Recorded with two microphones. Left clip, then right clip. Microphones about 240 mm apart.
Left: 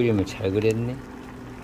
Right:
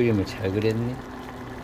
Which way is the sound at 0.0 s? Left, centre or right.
Centre.